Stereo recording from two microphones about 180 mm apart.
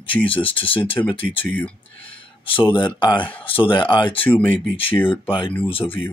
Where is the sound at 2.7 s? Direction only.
25° left (ahead or behind).